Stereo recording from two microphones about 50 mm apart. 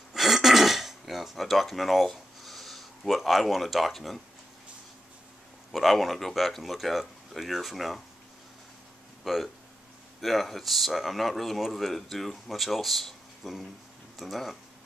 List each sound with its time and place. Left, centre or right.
0.1 s throat clearing: centre
5.7 s speech: centre
9.2 s speech: centre